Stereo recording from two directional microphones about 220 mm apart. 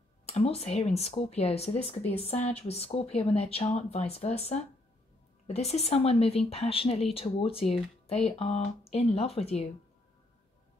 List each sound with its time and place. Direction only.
0.4 s speech: 30° left (ahead or behind)